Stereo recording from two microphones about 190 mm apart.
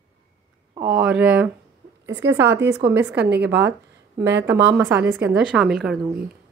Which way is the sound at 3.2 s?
60° right (ahead or behind).